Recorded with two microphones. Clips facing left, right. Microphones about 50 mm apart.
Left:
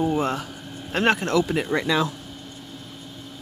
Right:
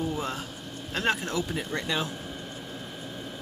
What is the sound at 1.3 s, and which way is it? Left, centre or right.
Speech, left.